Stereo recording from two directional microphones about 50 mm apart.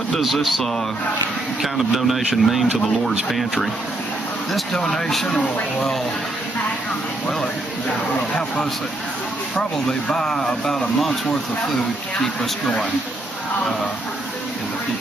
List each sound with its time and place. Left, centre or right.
0.2 s speech: centre
4.7 s speech: centre
9.6 s speech: centre
12.2 s speech: centre